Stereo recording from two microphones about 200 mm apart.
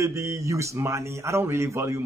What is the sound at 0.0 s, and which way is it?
A man's voice, 15° right (ahead or behind).